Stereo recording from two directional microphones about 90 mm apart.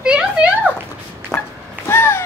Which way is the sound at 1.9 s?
30° left (ahead or behind).